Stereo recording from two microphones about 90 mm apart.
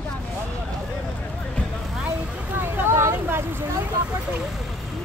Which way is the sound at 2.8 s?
30° right (ahead or behind).